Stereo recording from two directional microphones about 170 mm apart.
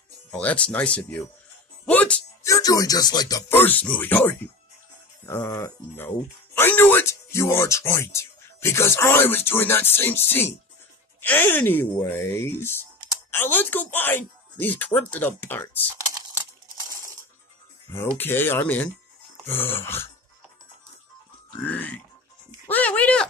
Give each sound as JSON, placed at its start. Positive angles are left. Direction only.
{"t": 0.3, "sound": "speech", "side_deg": 10}
{"t": 1.9, "sound": "music", "side_deg": 10}
{"t": 2.4, "sound": "speech", "side_deg": 20}
{"t": 17.9, "sound": "speech", "side_deg": 15}
{"t": 21.6, "sound": "speech", "side_deg": 10}